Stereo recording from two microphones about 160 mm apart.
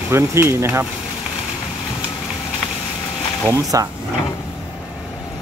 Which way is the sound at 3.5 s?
20° right (ahead or behind).